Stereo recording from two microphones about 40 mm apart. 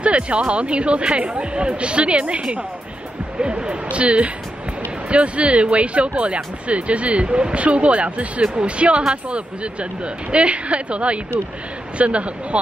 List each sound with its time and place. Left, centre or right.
0.0 s speech: right